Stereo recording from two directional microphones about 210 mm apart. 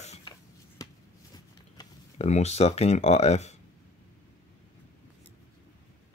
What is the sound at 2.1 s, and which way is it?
Speech, 30° left (ahead or behind).